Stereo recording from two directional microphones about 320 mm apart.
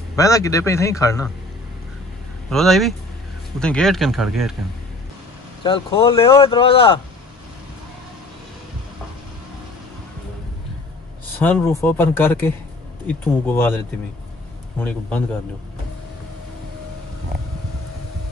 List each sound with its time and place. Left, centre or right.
0.1 s speech: centre
2.5 s speech: centre
5.6 s speech: centre
11.3 s speech: centre
14.8 s speech: centre